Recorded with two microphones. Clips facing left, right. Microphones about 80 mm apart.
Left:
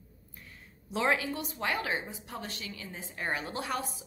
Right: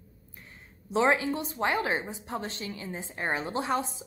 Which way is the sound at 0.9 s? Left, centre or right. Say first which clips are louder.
Right 5 dB; right.